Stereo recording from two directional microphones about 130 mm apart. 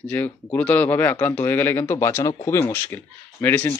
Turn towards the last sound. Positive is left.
turn(degrees=15)  # may be behind; listen again after turning